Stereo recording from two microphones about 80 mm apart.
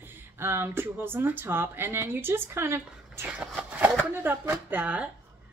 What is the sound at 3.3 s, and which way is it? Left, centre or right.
A woman's voice, centre.